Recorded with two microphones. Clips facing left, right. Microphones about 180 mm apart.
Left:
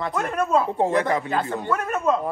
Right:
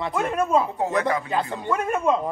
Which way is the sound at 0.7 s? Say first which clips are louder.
Left 2 dB; 30° left (ahead or behind).